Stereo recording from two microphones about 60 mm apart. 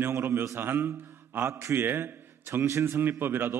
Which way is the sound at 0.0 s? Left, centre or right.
Right.